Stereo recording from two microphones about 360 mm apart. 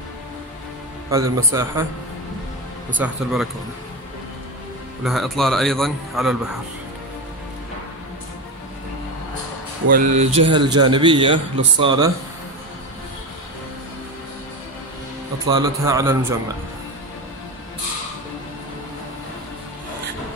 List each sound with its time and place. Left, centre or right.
1.1 s a man's voice: centre
3.0 s a man's voice: centre
5.0 s a man's voice: centre
9.8 s a man's voice: right
15.5 s a man's voice: centre